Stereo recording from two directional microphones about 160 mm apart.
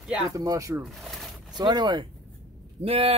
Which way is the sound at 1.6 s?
25° right (ahead or behind).